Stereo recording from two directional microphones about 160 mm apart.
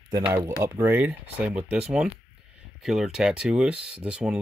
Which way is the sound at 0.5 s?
10° right (ahead or behind).